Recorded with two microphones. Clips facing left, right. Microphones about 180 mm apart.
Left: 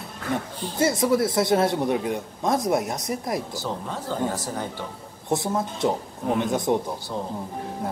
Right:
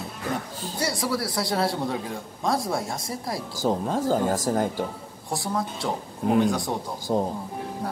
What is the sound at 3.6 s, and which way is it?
Speech, 45° right (ahead or behind).